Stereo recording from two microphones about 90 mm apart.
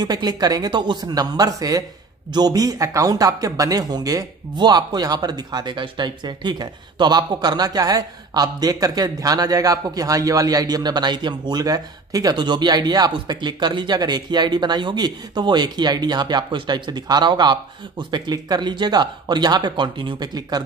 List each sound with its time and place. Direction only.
0.0 s speech: 50° right (ahead or behind)
12.4 s speech: 55° right (ahead or behind)